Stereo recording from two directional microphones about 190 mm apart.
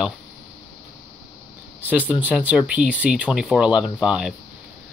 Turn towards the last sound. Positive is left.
turn(degrees=-5)  # may be behind; listen again after turning